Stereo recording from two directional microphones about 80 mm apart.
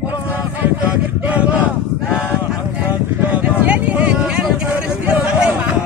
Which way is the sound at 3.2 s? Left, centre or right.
Centre.